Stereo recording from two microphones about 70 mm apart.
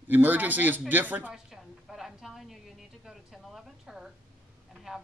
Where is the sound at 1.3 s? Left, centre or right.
Centre.